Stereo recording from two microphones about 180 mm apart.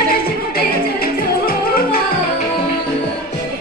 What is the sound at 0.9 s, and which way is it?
Music, 55° left (ahead or behind).